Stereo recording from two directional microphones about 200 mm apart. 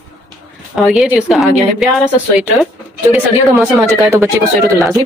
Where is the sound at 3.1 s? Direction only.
10° right (ahead or behind).